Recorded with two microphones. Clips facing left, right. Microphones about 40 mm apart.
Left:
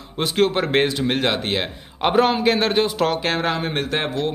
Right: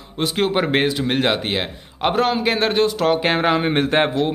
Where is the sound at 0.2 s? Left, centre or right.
Centre.